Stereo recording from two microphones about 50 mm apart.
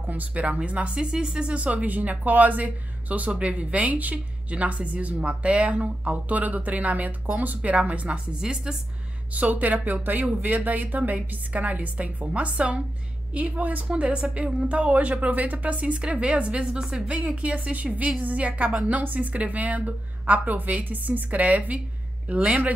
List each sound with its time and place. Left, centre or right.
0.1 s speech: right
8.3 s a woman's voice: centre
9.3 s a woman's voice: right; by 17.1 s centre
17.4 s a woman's voice: right